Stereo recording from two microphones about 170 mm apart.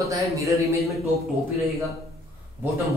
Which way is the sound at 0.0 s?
20° right (ahead or behind).